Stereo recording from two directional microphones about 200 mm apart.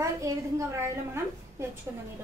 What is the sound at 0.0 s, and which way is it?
A woman's voice, 15° right (ahead or behind).